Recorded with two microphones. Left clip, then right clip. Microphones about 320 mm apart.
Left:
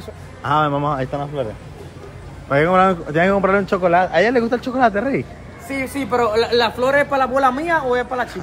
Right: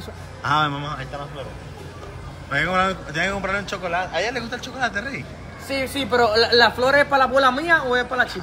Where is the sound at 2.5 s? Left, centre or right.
Centre.